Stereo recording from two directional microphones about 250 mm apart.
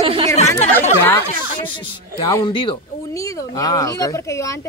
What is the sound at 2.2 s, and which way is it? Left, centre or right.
Speech, centre.